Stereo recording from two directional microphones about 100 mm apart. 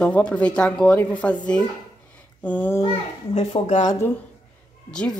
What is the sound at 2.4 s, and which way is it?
Speech, 15° left (ahead or behind).